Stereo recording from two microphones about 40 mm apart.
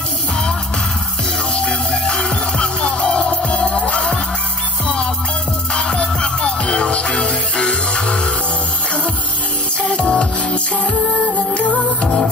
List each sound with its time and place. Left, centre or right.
1.5 s music: left
5.8 s music: left
9.8 s music: left